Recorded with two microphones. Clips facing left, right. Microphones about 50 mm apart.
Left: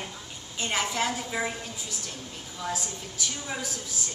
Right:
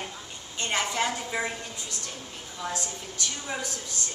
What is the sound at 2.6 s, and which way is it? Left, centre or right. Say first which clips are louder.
A woman's voice: even; centre.